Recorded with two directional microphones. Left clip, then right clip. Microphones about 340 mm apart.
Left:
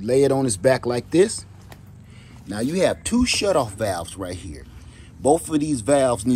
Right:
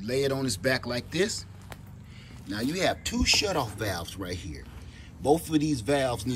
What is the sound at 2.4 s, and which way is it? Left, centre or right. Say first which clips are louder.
Speech: left 7 dB; centre.